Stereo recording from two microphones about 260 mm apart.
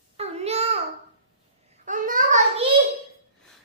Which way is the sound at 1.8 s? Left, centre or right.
Right.